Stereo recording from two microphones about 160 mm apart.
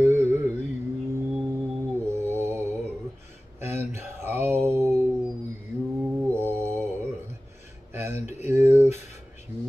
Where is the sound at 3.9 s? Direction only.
15° right (ahead or behind).